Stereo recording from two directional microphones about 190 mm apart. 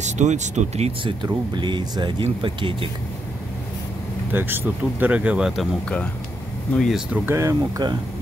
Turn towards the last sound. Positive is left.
turn(degrees=-15)  # may be behind; listen again after turning